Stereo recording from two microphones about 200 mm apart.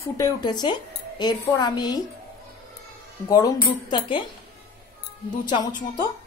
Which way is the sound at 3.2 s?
20° left (ahead or behind).